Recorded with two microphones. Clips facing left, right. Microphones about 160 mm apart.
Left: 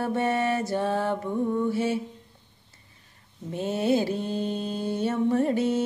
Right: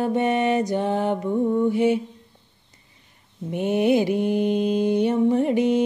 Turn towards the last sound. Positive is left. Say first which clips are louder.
# right 4 dB
turn(degrees=-15)  # may be behind; listen again after turning